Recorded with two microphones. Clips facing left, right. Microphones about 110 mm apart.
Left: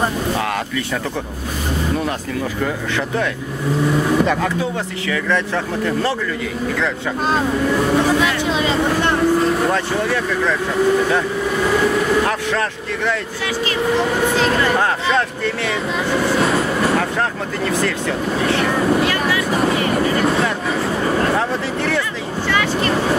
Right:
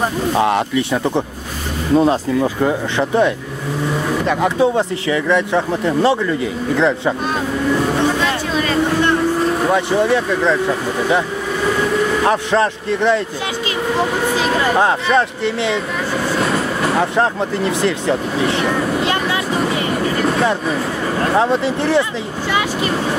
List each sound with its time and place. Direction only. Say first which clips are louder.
0.4 s speech: right 6 dB; 20° right (ahead or behind)
4.6 s speech: right 7 dB; 25° right (ahead or behind)
9.7 s speech: right 4 dB; 15° right (ahead or behind)
12.3 s speech: right 5 dB; 25° right (ahead or behind)
14.4 s speech: right 4 dB; 20° right (ahead or behind)
17.0 s speech: right 4 dB; 20° right (ahead or behind)
21.4 s speech: right 5 dB; 20° right (ahead or behind)